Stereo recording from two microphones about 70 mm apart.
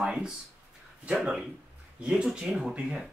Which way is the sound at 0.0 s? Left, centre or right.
Centre.